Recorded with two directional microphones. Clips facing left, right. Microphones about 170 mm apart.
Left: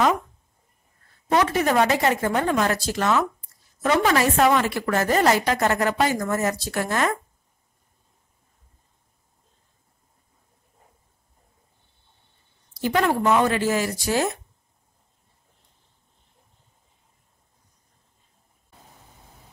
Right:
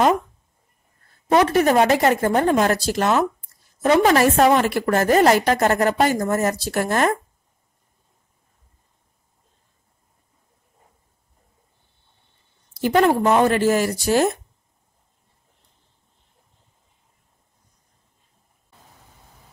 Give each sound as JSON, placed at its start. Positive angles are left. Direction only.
{"t": 1.4, "sound": "a woman's voice", "side_deg": -40}
{"t": 1.9, "sound": "a woman's voice", "side_deg": -45}
{"t": 12.9, "sound": "a woman's voice", "side_deg": -35}
{"t": 13.5, "sound": "a woman's voice", "side_deg": -45}